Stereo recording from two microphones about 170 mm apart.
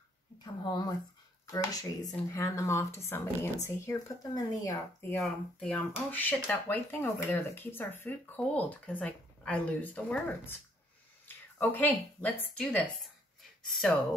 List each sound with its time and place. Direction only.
0.4 s a woman's voice: 25° left (ahead or behind)
5.2 s a woman's voice: 5° left (ahead or behind)